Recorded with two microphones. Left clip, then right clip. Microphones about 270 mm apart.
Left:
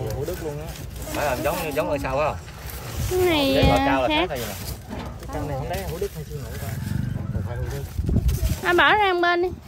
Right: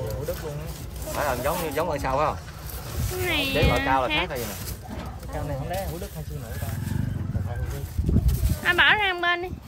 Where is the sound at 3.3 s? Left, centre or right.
Centre.